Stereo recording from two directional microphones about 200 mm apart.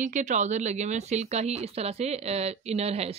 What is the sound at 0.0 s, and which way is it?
A woman's voice, 35° right (ahead or behind).